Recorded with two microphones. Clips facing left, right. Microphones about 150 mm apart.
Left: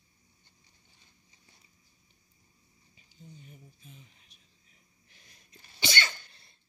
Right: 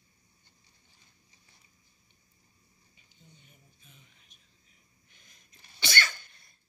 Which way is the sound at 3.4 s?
35° left (ahead or behind).